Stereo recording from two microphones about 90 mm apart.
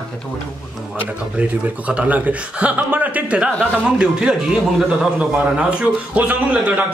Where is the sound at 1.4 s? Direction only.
15° right (ahead or behind).